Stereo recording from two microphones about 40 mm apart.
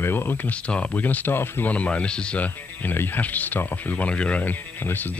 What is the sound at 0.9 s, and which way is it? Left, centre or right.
Speech, left.